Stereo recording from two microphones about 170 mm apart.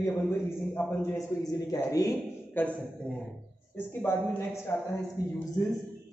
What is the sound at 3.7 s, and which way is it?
Speech, 10° left (ahead or behind).